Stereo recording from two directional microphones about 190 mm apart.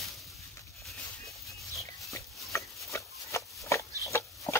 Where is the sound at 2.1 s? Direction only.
15° left (ahead or behind).